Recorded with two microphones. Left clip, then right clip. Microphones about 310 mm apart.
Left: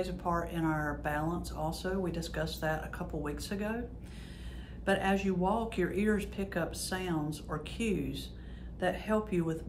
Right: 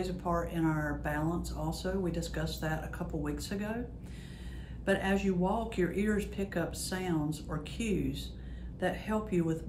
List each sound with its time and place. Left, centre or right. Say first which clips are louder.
0.0 s speech: even; centre
4.8 s speech: even; centre